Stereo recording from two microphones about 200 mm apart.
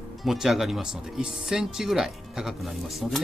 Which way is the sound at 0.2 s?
Centre (ahead or behind).